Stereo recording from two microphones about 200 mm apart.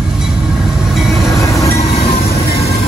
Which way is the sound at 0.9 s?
Centre (ahead or behind).